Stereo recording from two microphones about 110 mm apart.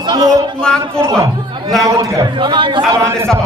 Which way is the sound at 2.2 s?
45° right (ahead or behind).